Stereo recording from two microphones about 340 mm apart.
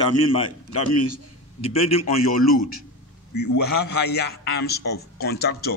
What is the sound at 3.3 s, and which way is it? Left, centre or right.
A man's voice, left.